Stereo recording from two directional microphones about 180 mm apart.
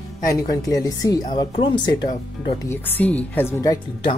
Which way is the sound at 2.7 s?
10° left (ahead or behind).